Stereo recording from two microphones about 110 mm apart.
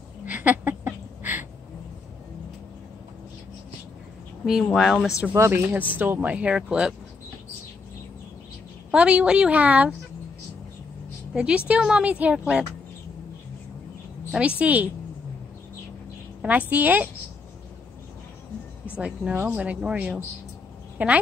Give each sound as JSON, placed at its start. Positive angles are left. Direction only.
{"t": 0.2, "sound": "a sound", "side_deg": -15}
{"t": 4.7, "sound": "speech", "side_deg": -5}
{"t": 5.3, "sound": "speech", "side_deg": -20}
{"t": 8.9, "sound": "speech", "side_deg": -10}
{"t": 11.3, "sound": "speech", "side_deg": -10}
{"t": 14.3, "sound": "speech", "side_deg": -10}
{"t": 16.4, "sound": "speech", "side_deg": -15}
{"t": 18.9, "sound": "speech", "side_deg": -10}